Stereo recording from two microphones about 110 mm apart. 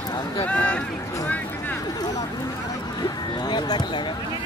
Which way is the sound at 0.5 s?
10° left (ahead or behind).